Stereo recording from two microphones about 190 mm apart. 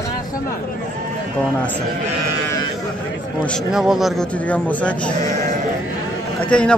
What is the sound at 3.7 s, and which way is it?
Speech, centre (ahead or behind).